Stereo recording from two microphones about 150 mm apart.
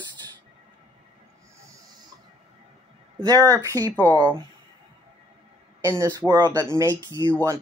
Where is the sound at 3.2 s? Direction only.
25° right (ahead or behind).